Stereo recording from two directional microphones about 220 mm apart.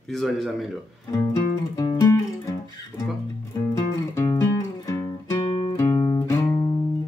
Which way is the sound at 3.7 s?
15° left (ahead or behind).